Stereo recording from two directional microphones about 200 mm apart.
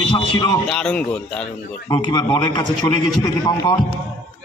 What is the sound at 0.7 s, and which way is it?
Speech, 5° left (ahead or behind).